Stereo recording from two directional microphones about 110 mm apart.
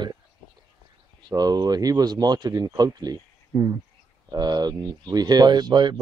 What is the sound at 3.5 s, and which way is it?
Speech, 20° right (ahead or behind).